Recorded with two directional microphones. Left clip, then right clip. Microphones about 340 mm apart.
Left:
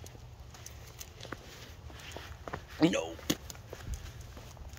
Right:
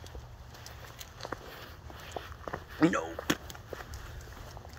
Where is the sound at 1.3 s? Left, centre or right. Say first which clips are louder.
Right 4 dB; centre.